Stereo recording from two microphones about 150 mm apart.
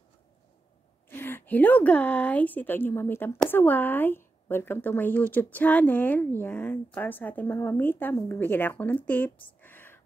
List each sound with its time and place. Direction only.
1.1 s a woman's voice: 15° left (ahead or behind)